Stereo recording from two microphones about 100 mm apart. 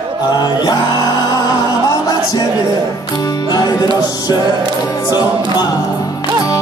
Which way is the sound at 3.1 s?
40° left (ahead or behind).